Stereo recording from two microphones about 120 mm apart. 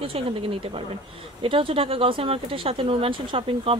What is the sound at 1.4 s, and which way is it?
Speech, 50° right (ahead or behind).